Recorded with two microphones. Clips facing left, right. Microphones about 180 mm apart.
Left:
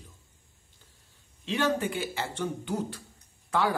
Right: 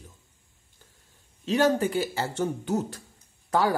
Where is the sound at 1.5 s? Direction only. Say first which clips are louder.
Right 5 dB; 40° right (ahead or behind).